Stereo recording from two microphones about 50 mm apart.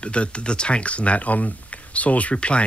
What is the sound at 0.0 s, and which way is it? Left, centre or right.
Speech, left.